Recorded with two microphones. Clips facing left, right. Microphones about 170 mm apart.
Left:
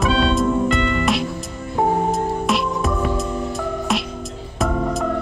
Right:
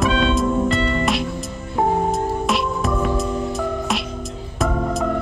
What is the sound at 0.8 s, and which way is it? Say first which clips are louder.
Music: even; 35° right (ahead or behind).